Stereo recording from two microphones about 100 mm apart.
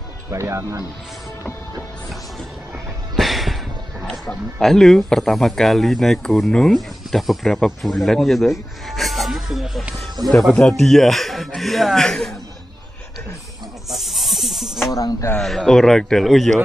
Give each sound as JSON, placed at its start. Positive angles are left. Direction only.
{"t": 0.3, "sound": "speech", "side_deg": -30}
{"t": 3.2, "sound": "music", "side_deg": 0}
{"t": 4.1, "sound": "speech", "side_deg": 5}
{"t": 13.9, "sound": "snake", "side_deg": 0}
{"t": 14.9, "sound": "speech", "side_deg": 35}
{"t": 15.3, "sound": "speech", "side_deg": 5}